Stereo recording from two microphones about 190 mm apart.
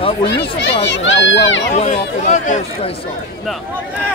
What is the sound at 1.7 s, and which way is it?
Speech, 35° left (ahead or behind).